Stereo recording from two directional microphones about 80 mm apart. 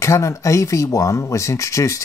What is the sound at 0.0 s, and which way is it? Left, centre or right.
Speech, left.